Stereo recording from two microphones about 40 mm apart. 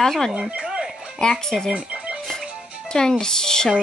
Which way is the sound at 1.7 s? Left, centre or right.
Right.